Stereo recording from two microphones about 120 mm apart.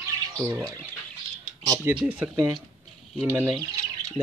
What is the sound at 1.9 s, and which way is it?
Speech, 20° right (ahead or behind).